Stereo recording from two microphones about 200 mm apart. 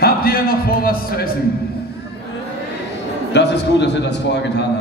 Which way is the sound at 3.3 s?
60° left (ahead or behind).